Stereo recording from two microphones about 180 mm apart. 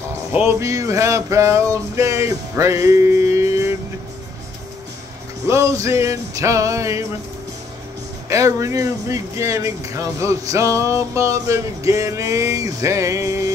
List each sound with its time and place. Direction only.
0.3 s speech: 10° right (ahead or behind)
5.5 s speech: 15° right (ahead or behind)
8.3 s speech: 15° right (ahead or behind)